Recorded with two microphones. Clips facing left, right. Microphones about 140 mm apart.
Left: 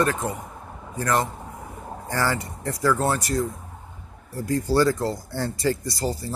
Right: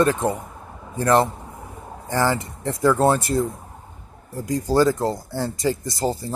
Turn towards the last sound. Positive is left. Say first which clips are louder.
# right 3 dB
turn(degrees=-20)  # may be behind; listen again after turning